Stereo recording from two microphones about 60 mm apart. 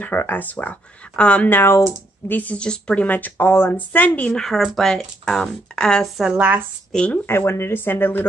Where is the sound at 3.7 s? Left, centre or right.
Left.